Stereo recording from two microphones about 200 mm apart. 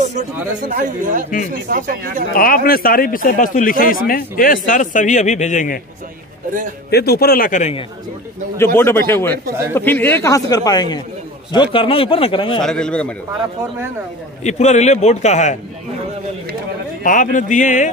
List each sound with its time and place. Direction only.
0.7 s speech: 40° right (ahead or behind)
2.3 s speech: 45° left (ahead or behind)
6.9 s speech: 50° left (ahead or behind); by 7.8 s 35° left (ahead or behind)
8.5 s a man's voice: 10° left (ahead or behind)
12.6 s a man's voice: 5° left (ahead or behind)
14.4 s a man's voice: 35° left (ahead or behind)
17.0 s a man's voice: 40° left (ahead or behind)